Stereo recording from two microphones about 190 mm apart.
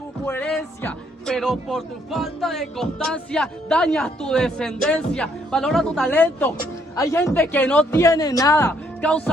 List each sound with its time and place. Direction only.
0.2 s a woman's voice: 10° left (ahead or behind)
8.0 s a woman's voice: 20° left (ahead or behind)